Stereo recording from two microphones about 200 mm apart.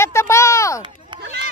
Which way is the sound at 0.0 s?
15° left (ahead or behind).